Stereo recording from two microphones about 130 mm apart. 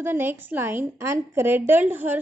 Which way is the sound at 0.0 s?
15° right (ahead or behind).